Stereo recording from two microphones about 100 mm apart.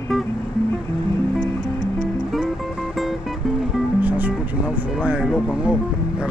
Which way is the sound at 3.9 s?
15° right (ahead or behind).